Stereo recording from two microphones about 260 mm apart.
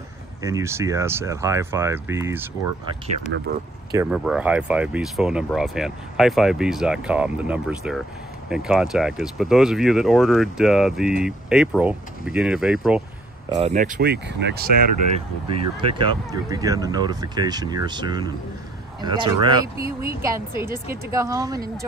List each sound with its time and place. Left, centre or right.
0.4 s speech: centre
3.9 s speech: centre
13.6 s speech: right
15.8 s speech: centre